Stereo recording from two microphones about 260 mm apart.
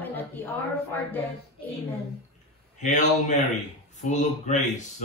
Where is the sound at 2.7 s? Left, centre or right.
Left.